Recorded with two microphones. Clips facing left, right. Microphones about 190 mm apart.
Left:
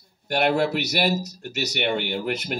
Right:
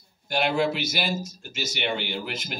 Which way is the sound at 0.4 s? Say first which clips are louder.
Left 3 dB; 65° left (ahead or behind).